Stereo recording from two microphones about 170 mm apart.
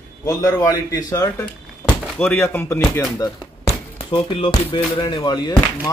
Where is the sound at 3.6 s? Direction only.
35° left (ahead or behind).